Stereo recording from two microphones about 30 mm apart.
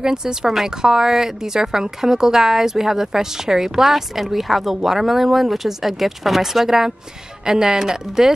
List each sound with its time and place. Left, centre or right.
0.0 s speech: right